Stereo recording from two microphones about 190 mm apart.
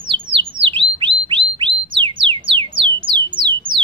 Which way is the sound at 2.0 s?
25° right (ahead or behind).